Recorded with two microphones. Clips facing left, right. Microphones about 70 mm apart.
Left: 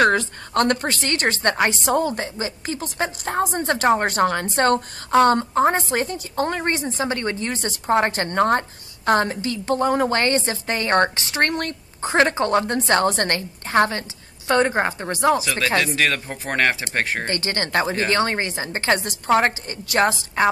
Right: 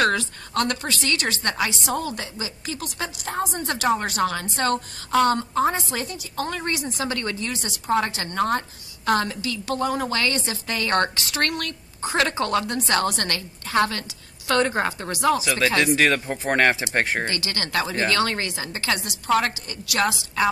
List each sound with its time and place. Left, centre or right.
0.1 s a woman's voice: left
2.0 s a woman's voice: left
15.8 s speech: centre
17.3 s a woman's voice: left